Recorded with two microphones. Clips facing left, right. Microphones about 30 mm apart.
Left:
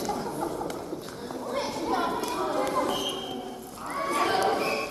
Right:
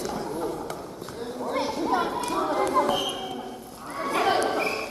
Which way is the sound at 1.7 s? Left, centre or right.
Centre.